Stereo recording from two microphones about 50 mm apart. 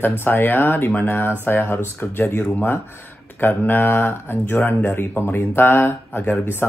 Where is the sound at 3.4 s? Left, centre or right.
Left.